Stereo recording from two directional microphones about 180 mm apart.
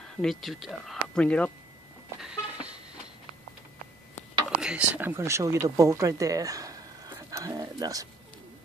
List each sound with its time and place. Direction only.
0.0 s speech: centre (ahead or behind)
2.1 s a sound: 5° right (ahead or behind)
4.6 s speech: 5° right (ahead or behind)